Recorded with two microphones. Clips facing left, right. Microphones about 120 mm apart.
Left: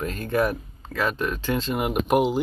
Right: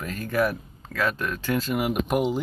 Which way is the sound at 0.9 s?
15° left (ahead or behind).